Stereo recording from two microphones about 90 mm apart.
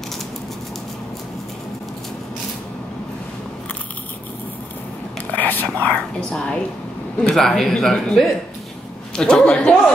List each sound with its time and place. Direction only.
5.3 s a man's voice: 20° left (ahead or behind)